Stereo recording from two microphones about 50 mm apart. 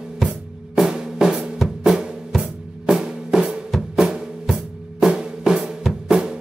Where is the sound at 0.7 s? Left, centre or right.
Centre.